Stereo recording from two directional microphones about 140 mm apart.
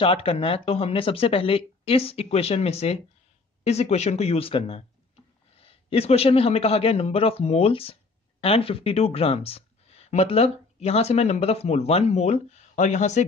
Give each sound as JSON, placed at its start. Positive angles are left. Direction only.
{"t": 0.0, "sound": "speech", "side_deg": 40}